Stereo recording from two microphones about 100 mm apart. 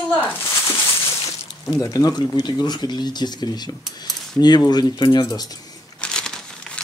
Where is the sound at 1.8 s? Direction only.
40° left (ahead or behind).